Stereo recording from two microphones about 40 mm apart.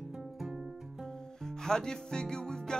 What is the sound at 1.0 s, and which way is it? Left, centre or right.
Music, centre.